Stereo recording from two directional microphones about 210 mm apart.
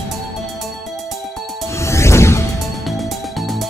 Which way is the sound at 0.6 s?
Centre (ahead or behind).